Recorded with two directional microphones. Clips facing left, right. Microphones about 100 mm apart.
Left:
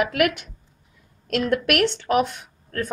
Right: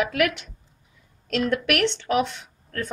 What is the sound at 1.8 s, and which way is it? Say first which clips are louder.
A woman's voice: left 2 dB; 5° left (ahead or behind).